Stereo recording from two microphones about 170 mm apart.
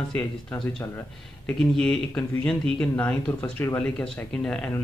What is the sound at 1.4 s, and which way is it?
Speech, 5° left (ahead or behind).